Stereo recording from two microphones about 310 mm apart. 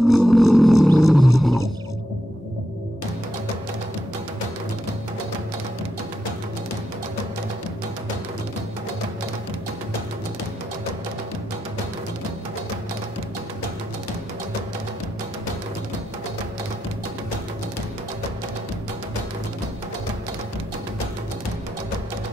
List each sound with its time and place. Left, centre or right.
0.1 s roaring cats: centre